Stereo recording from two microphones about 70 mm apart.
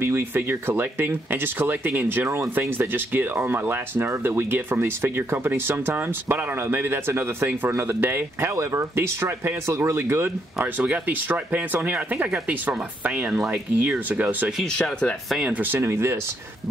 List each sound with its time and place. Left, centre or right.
0.0 s speech: right
2.2 s speech: right
2.9 s speech: right
10.6 s speech: right
13.3 s speech: centre
13.7 s speech: right
14.7 s speech: centre
15.6 s speech: right